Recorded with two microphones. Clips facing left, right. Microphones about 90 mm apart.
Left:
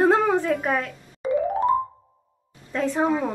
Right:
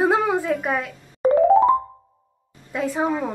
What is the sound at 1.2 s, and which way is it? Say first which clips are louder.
Music: right 6 dB; 45° right (ahead or behind).